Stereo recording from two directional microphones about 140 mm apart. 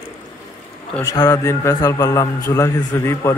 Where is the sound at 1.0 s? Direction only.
25° left (ahead or behind).